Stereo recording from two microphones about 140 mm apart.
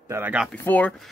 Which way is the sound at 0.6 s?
10° left (ahead or behind).